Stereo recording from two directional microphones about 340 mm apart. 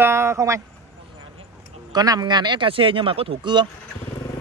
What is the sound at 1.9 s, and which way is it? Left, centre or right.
A man's voice, centre.